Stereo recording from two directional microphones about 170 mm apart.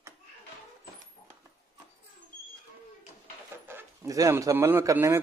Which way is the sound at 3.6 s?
15° right (ahead or behind).